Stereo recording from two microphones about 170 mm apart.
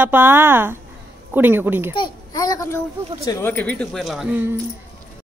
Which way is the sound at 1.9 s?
25° left (ahead or behind).